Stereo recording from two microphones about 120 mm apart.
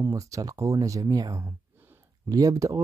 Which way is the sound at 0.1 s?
30° right (ahead or behind).